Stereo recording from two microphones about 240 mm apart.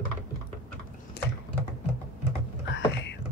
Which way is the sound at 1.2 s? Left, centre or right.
Left.